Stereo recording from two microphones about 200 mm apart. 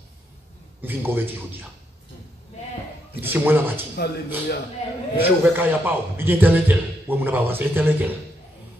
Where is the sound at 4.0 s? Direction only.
55° left (ahead or behind).